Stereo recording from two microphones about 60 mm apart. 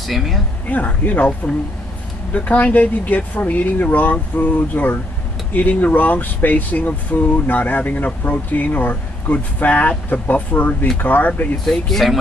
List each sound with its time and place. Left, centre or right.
0.0 s speech: centre
0.7 s speech: left
11.6 s speech: centre